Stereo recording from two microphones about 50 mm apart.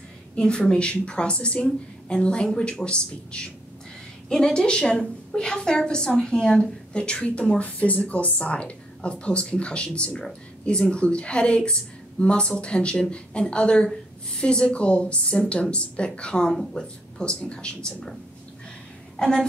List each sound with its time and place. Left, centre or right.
0.4 s a woman's voice: centre
19.1 s a woman's voice: centre